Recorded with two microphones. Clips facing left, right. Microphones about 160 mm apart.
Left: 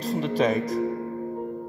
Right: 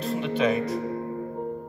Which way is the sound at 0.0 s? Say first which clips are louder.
Left 1 dB; 35° left (ahead or behind).